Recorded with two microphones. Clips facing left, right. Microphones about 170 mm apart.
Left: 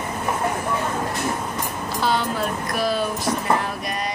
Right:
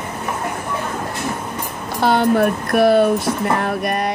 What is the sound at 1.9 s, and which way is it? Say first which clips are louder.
Speech: right 8 dB; 60° right (ahead or behind).